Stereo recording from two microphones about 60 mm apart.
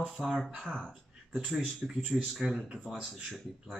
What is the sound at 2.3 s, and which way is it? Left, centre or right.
Speech, centre.